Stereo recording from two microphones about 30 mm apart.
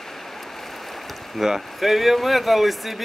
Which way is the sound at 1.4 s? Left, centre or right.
Centre.